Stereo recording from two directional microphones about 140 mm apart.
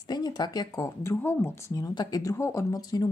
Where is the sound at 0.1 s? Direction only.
30° left (ahead or behind).